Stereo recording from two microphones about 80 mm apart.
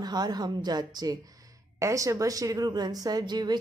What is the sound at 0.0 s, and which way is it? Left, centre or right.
A woman's voice, right.